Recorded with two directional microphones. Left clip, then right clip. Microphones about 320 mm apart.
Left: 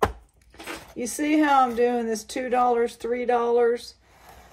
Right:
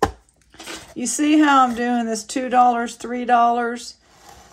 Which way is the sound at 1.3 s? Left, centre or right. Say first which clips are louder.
Right 4 dB; centre.